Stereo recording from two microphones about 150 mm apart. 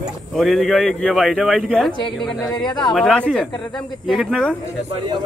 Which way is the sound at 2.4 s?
30° left (ahead or behind).